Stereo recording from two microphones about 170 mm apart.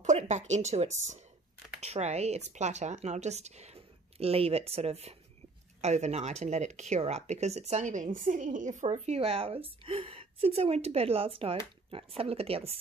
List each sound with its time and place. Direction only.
0.0 s speech: 45° right (ahead or behind)